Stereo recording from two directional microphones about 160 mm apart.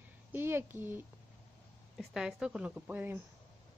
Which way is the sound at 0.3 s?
15° right (ahead or behind).